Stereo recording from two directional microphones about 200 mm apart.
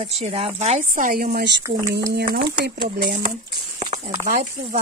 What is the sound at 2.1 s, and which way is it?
Speech, 50° right (ahead or behind).